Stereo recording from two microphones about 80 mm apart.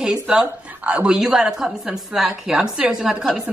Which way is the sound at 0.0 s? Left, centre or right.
Centre.